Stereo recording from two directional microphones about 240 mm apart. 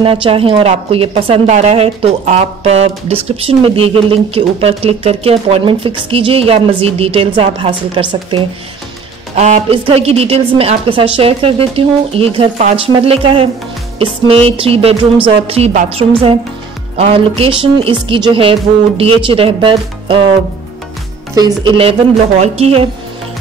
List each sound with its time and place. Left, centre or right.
0.0 s a woman's voice: right
21.4 s a woman's voice: centre